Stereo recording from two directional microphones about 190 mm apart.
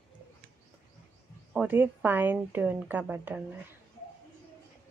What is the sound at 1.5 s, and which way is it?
A woman's voice, 5° right (ahead or behind).